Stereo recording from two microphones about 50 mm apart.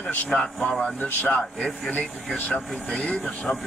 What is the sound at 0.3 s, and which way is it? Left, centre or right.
Speech, centre.